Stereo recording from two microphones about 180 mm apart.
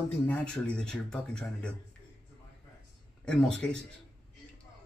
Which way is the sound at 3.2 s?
5° left (ahead or behind).